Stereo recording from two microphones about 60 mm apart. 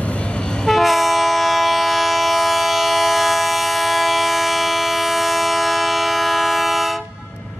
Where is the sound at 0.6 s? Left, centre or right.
Centre.